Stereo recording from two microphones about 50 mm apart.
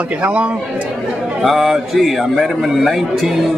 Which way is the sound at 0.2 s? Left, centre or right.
Right.